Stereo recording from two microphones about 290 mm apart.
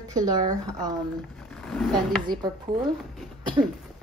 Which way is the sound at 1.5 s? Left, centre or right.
Centre.